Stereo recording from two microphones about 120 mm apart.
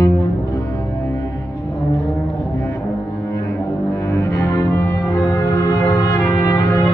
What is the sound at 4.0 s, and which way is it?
Music, 20° left (ahead or behind).